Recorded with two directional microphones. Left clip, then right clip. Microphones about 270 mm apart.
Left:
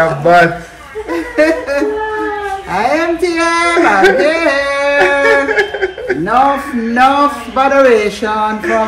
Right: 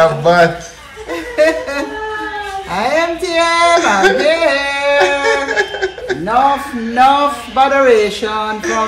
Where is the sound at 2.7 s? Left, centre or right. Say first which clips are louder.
Left 1 dB; centre.